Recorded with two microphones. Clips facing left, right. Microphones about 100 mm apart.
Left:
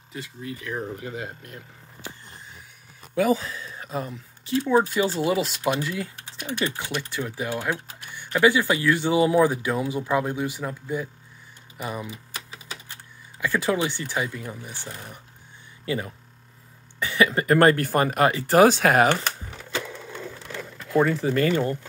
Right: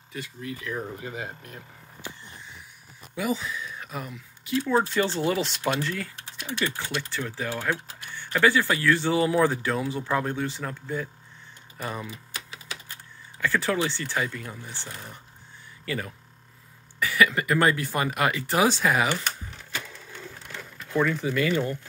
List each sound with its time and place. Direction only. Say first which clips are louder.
0.1 s speech: even; 25° left (ahead or behind)
3.2 s speech: left 6 dB; 45° left (ahead or behind)
4.6 s speech: left 3 dB; 15° left (ahead or behind)
13.4 s speech: left 2 dB; 15° left (ahead or behind); by 17.6 s 30° left (ahead or behind)
17.6 s speech: left 6 dB; 50° left (ahead or behind)
18.6 s speech: left 6 dB; 55° left (ahead or behind)
21.0 s speech: left 3 dB; 40° left (ahead or behind)